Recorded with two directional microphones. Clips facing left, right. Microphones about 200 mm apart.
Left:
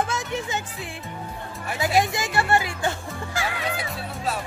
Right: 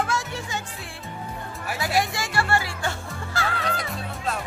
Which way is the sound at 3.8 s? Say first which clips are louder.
Left 1 dB; 5° left (ahead or behind).